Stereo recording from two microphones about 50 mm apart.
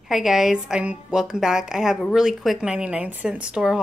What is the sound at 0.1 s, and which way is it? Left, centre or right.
A woman's voice, centre.